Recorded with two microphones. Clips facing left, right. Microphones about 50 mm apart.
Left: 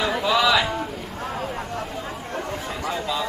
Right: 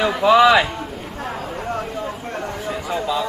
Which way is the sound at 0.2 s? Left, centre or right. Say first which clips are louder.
Right 8 dB; right.